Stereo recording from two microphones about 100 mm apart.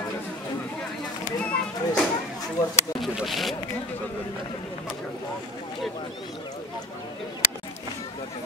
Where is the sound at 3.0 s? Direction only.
Centre (ahead or behind).